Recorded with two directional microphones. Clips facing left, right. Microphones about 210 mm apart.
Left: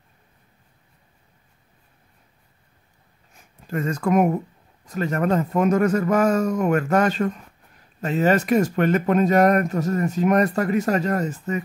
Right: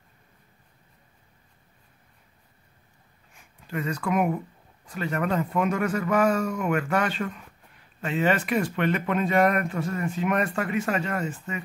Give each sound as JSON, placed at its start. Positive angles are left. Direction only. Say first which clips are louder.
{"t": 3.3, "sound": "speech", "louder": "left 5 dB", "side_deg": 45}